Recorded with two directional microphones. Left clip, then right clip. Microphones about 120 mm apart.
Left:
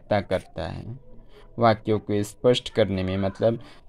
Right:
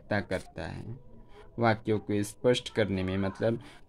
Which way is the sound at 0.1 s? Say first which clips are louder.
Left 8 dB; 25° left (ahead or behind).